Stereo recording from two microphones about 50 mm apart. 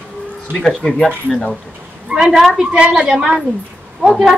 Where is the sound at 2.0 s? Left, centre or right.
Centre.